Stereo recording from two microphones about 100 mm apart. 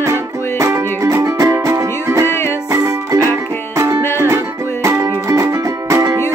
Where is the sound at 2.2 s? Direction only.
25° left (ahead or behind).